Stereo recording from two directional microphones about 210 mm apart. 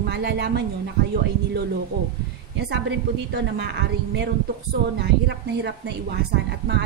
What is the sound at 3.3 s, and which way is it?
A woman's voice, 55° right (ahead or behind).